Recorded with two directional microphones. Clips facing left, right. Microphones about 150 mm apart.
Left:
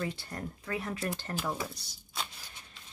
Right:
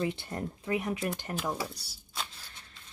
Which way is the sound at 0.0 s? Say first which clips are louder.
Right 4 dB; 20° right (ahead or behind).